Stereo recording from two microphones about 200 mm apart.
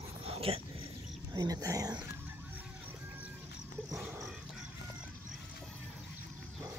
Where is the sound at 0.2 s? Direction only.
30° right (ahead or behind).